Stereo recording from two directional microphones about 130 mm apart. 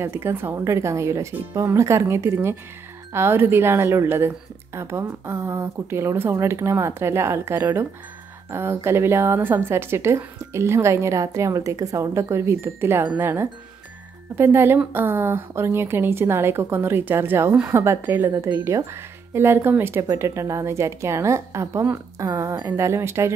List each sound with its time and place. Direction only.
0.0 s a woman's voice: 20° right (ahead or behind)